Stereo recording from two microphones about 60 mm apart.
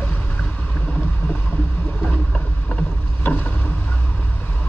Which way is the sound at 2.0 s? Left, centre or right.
Centre.